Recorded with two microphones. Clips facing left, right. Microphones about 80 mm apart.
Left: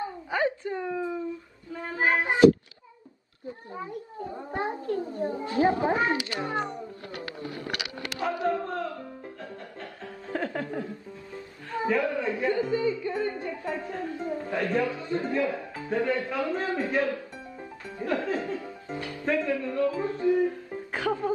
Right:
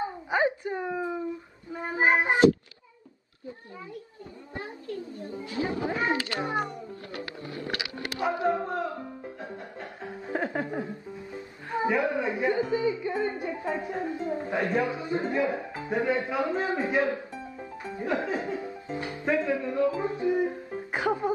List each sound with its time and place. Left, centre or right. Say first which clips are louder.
0.0 s a sound: right 1 dB; right
1.7 s child singing: right 2 dB; right
3.7 s a sound: left 6 dB; left
6.4 s speech: right 1 dB; centre
6.7 s cat: left 1 dB; left
7.4 s music: even; right
10.3 s chuckle: right 1 dB; right
11.7 s a woman's voice: right 1 dB; right